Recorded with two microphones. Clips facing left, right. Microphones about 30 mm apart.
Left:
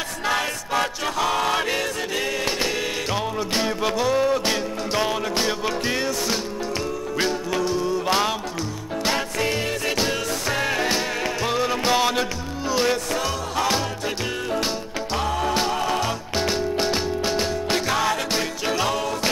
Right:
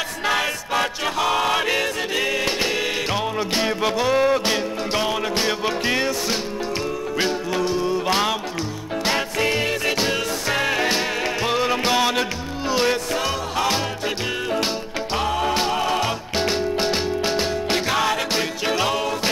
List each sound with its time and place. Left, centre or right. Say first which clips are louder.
0.3 s choir: right 1 dB; centre
4.5 s music: right 2 dB; centre
7.2 s music: right 1 dB; centre
15.1 s music: right 1 dB; centre